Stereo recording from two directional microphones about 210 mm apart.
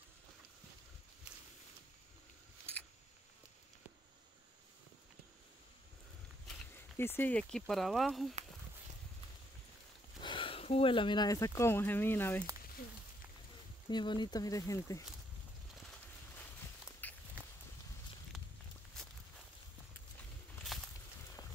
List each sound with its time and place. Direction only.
6.4 s speech: 10° left (ahead or behind)
10.2 s speech: 25° left (ahead or behind)
13.8 s speech: 20° left (ahead or behind)
17.0 s walk: 10° left (ahead or behind)
20.7 s a sound: centre (ahead or behind)